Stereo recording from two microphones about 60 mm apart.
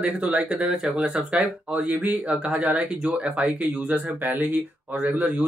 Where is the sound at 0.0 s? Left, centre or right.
Right.